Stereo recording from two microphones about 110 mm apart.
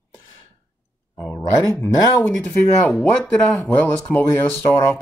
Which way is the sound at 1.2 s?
25° left (ahead or behind).